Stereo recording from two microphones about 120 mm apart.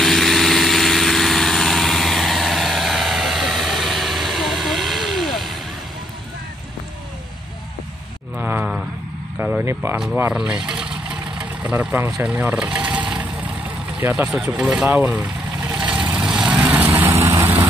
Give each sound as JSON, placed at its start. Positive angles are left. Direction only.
{"t": 0.0, "sound": "vehicle", "side_deg": 0}
{"t": 8.4, "sound": "a sound", "side_deg": -15}
{"t": 9.4, "sound": "vehicle", "side_deg": -20}
{"t": 10.3, "sound": "speech", "side_deg": -5}
{"t": 11.3, "sound": "vehicle", "side_deg": -10}
{"t": 13.9, "sound": "speech", "side_deg": -20}
{"t": 14.4, "sound": "speech", "side_deg": -5}
{"t": 14.9, "sound": "vehicle", "side_deg": -15}
{"t": 16.6, "sound": "vehicle", "side_deg": -20}